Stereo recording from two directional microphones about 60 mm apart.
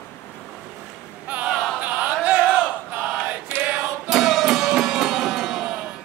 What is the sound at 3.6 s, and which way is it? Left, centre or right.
Music, right.